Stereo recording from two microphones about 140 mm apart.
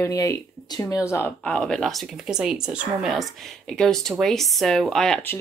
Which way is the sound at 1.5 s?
5° left (ahead or behind).